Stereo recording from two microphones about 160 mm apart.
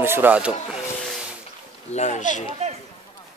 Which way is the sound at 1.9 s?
45° left (ahead or behind).